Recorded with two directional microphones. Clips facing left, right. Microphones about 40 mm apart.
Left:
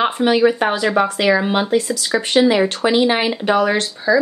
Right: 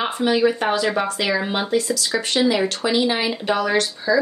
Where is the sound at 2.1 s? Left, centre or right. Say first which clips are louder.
Left 6 dB; left.